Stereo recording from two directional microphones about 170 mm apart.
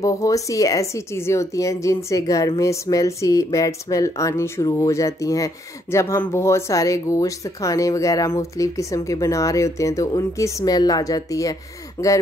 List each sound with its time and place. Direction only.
0.0 s speech: 20° left (ahead or behind)